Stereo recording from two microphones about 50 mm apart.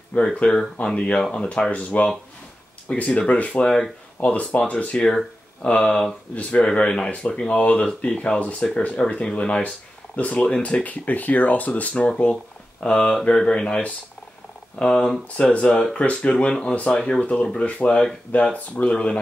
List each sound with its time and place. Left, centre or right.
0.1 s speech: left
5.0 s speech: centre
12.8 s speech: centre